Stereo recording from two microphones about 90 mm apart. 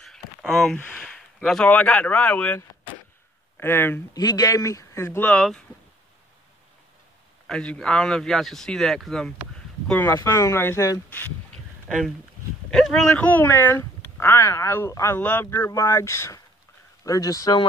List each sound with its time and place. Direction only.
0.0 s a sound: 5° left (ahead or behind)
0.7 s speech: 10° left (ahead or behind)
4.1 s speech: 45° left (ahead or behind); by 5.2 s 30° left (ahead or behind)
7.4 s speech: 10° left (ahead or behind)
9.9 s speech: 30° left (ahead or behind)
12.7 s speech: centre (ahead or behind)
13.1 s speech: 20° left (ahead or behind)
15.1 s speech: 20° left (ahead or behind)
15.7 s speech: 35° left (ahead or behind)